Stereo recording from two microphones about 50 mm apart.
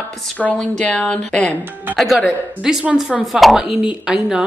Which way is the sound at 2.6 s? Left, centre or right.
Centre.